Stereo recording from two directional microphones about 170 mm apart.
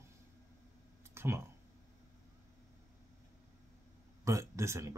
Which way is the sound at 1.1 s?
15° right (ahead or behind).